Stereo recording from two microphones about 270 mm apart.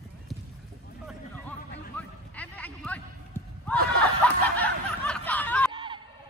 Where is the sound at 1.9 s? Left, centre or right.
Centre.